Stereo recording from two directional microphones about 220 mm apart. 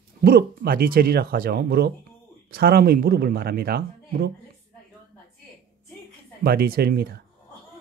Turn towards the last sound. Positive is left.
turn(degrees=-45)  # may be behind; listen again after turning